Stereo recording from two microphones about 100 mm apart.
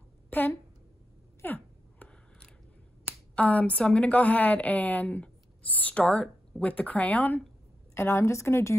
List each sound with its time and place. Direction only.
1.4 s a sound: 20° left (ahead or behind)
3.3 s a woman's voice: 15° left (ahead or behind)
7.9 s a woman's voice: 25° left (ahead or behind)